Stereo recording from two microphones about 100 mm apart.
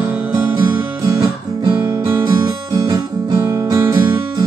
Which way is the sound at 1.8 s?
25° right (ahead or behind).